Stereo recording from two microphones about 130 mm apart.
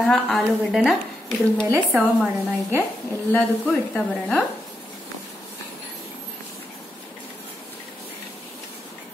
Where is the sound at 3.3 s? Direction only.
10° left (ahead or behind).